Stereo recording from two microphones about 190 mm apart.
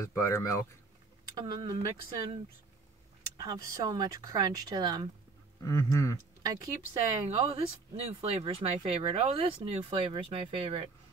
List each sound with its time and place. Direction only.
0.1 s speech: 15° left (ahead or behind)
1.4 s speech: 25° right (ahead or behind)
3.3 s speech: 20° right (ahead or behind)
5.6 s speech: 15° left (ahead or behind)
6.4 s speech: 20° right (ahead or behind)
7.2 s speech: 30° right (ahead or behind)